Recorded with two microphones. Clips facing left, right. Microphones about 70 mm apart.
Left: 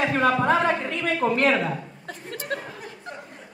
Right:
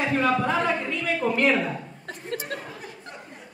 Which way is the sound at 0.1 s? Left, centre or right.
Left.